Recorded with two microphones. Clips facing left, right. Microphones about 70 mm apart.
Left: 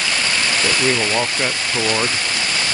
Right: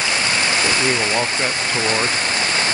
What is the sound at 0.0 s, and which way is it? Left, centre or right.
Stream, right.